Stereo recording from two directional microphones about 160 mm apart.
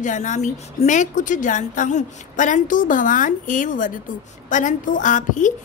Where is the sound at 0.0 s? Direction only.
50° left (ahead or behind).